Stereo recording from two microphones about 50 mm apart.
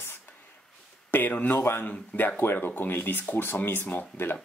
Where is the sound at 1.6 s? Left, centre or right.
Left.